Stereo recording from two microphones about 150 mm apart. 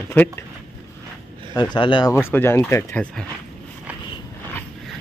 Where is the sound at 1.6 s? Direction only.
30° left (ahead or behind).